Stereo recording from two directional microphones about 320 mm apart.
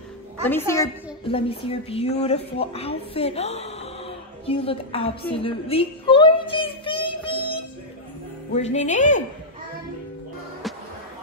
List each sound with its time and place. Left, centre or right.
0.5 s a woman's voice: centre
5.3 s child singing: centre
8.5 s speech: left